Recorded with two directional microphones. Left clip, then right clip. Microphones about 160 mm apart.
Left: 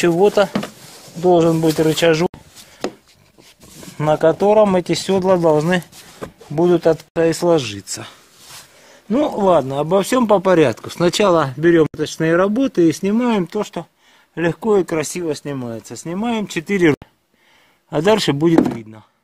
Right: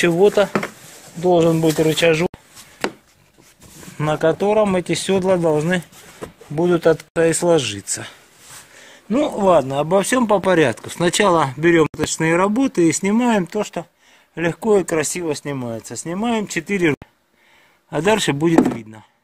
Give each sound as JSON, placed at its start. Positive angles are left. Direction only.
{"t": 0.0, "sound": "speech", "side_deg": 5}
{"t": 4.0, "sound": "speech", "side_deg": 10}
{"t": 9.1, "sound": "speech", "side_deg": 15}
{"t": 14.7, "sound": "speech", "side_deg": 5}
{"t": 16.6, "sound": "speech", "side_deg": 20}